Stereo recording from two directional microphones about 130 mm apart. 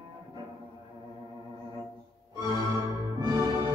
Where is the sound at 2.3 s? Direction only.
30° right (ahead or behind).